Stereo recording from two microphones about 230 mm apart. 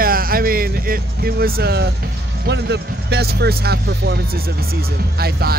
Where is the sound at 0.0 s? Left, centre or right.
Right.